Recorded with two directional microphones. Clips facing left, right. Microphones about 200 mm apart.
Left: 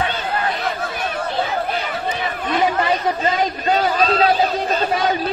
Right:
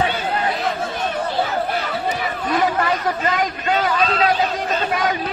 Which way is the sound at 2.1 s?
20° left (ahead or behind).